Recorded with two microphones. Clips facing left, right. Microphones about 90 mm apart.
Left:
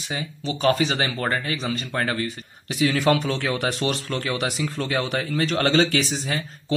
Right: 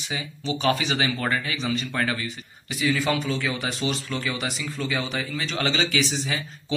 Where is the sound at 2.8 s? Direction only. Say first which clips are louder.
Left 4 dB; 60° left (ahead or behind).